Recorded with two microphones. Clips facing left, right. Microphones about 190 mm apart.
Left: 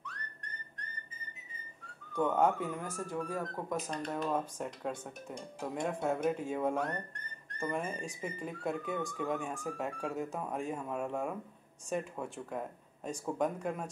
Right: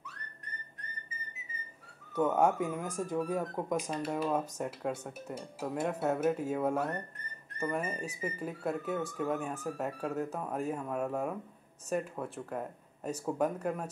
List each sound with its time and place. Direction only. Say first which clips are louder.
0.0 s whistling: left 2 dB; 5° right (ahead or behind)
2.1 s speech: right 2 dB; 10° right (ahead or behind)
3.8 s speech: right 3 dB; 5° right (ahead or behind)